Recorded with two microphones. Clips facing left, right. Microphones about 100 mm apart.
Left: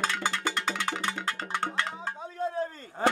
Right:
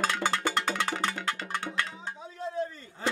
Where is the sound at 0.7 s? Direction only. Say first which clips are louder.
Right 1 dB; 20° left (ahead or behind).